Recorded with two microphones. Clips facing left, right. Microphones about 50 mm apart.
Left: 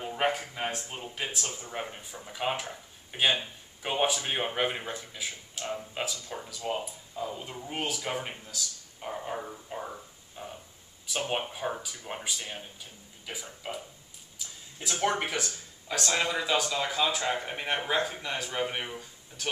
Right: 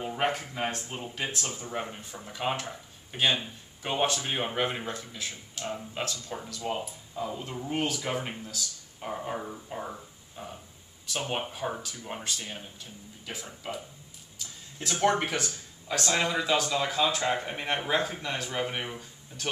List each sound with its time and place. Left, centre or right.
0.0 s speech: centre
14.8 s speech: centre